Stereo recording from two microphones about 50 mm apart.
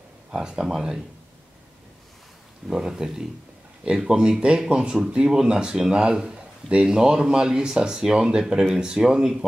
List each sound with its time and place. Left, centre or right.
0.3 s speech: centre
2.7 s speech: centre